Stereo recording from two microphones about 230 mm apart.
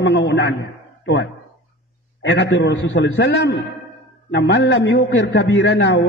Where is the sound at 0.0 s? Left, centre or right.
Left.